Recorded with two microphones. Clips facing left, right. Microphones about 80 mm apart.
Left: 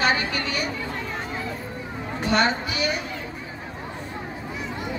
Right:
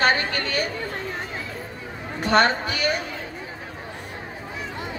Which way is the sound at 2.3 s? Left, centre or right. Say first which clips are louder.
Right 3 dB; right.